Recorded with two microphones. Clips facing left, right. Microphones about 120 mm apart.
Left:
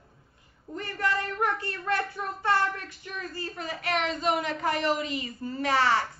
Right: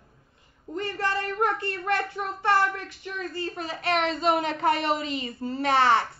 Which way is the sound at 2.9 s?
25° right (ahead or behind).